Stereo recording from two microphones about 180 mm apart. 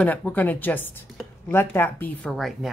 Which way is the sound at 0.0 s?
10° left (ahead or behind).